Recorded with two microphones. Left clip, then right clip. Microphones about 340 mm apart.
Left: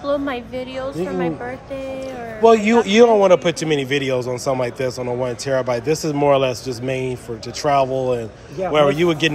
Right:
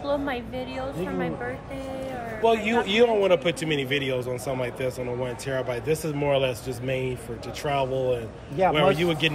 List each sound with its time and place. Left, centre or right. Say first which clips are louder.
0.0 s a sound: left 6 dB; left
1.0 s speech: left 8 dB; left
2.4 s a man's voice: left 9 dB; centre